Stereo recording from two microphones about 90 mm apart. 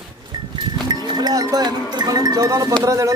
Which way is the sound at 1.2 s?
50° right (ahead or behind).